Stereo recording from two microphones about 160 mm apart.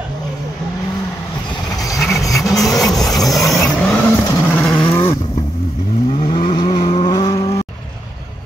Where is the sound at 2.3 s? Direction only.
Centre (ahead or behind).